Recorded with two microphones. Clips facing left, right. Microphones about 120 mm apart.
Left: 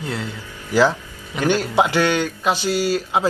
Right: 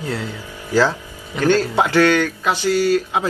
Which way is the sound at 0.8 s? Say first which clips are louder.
Even; 15° left (ahead or behind).